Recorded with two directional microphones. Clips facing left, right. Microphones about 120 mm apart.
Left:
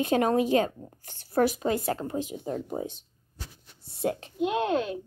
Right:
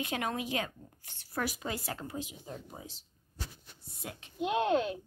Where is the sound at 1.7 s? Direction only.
50° left (ahead or behind).